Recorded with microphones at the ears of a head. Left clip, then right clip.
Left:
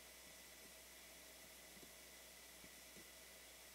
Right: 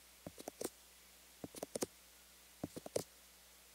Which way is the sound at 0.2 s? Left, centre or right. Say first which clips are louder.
Right 12 dB; right.